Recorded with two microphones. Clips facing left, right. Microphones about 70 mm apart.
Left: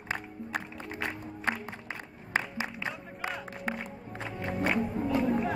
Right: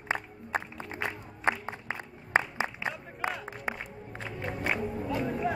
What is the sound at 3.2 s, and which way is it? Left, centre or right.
Music, right.